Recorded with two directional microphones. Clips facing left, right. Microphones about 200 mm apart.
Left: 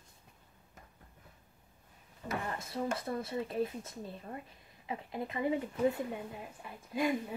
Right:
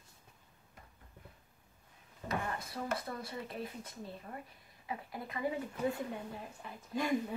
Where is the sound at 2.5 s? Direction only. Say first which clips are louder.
Left 3 dB; 25° left (ahead or behind).